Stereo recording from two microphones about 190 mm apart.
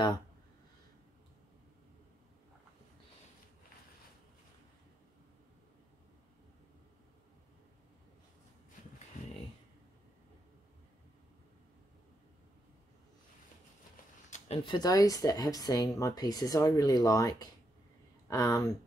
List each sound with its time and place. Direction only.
14.3 s speech: 30° left (ahead or behind)